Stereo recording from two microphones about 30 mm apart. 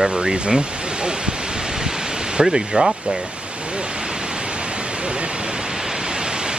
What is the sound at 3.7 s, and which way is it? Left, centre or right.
Pink noise, right.